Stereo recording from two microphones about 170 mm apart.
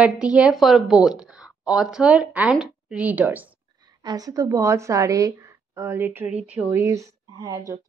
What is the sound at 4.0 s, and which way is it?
A woman's voice, 25° right (ahead or behind).